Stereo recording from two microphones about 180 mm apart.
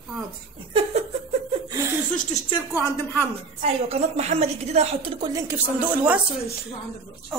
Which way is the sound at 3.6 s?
35° right (ahead or behind).